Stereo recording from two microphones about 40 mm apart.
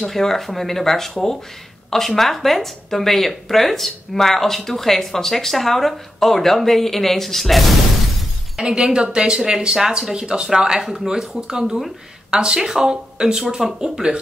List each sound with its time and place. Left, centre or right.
0.0 s speech: centre
8.6 s a woman's voice: right